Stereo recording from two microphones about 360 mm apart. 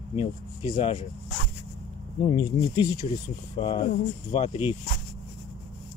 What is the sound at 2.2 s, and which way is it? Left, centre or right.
Speech, centre.